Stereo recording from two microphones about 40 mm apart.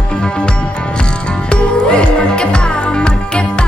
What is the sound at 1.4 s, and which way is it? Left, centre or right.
Music, left.